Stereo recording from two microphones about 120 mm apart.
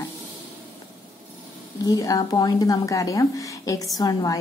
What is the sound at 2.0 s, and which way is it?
A woman's voice, 30° left (ahead or behind).